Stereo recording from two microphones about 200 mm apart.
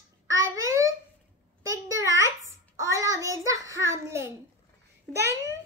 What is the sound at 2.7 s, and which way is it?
Child singing, 15° right (ahead or behind).